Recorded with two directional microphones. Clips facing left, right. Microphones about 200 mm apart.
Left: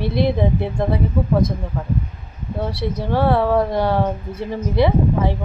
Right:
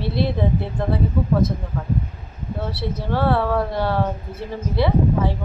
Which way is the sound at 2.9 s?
15° left (ahead or behind).